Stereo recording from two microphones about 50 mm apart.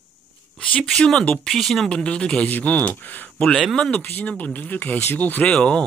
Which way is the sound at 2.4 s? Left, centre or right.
Left.